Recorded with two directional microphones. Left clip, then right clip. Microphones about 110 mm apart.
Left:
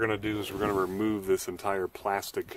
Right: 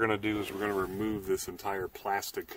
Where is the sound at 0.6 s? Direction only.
35° left (ahead or behind).